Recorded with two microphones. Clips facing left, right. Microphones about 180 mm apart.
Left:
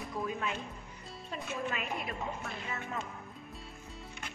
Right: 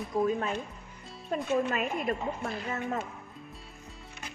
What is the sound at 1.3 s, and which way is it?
A woman's voice, 50° right (ahead or behind).